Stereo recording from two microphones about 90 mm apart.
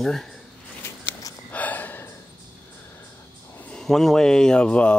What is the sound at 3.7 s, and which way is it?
Speech, 5° left (ahead or behind).